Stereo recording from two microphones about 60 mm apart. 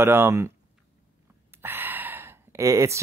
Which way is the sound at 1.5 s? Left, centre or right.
Right.